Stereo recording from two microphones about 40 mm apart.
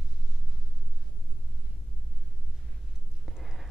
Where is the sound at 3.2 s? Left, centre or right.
Centre.